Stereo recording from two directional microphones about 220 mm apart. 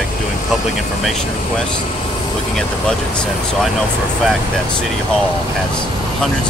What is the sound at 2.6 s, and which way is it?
Speech, 5° left (ahead or behind).